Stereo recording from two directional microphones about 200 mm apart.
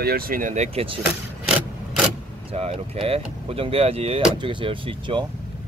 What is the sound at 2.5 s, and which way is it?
Speech, 30° right (ahead or behind).